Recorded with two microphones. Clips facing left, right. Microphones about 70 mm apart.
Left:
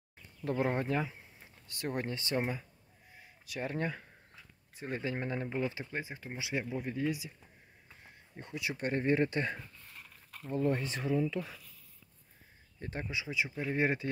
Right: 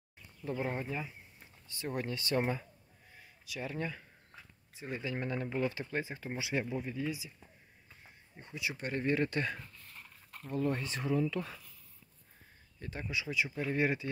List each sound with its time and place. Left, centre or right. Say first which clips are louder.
0.5 s speech: left 5 dB; left
1.7 s speech: left 2 dB; left
2.0 s speech: right 2 dB; left
3.4 s speech: left 3 dB; left; by 5.9 s centre
5.9 s speech: right 3 dB; centre
6.8 s speech: left 3 dB; left
8.4 s speech: left 2 dB; left
8.9 s speech: left 2 dB; left
9.9 s a sound: even; centre
10.5 s speech: left 2 dB; left
13.0 s speech: right 1 dB; left